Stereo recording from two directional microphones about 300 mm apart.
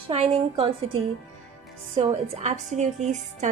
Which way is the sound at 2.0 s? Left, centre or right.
Centre.